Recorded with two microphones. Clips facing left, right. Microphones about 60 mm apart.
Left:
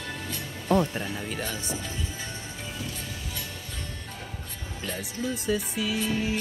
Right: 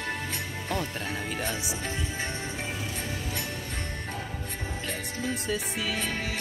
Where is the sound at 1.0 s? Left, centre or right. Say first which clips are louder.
Right 1 dB; right.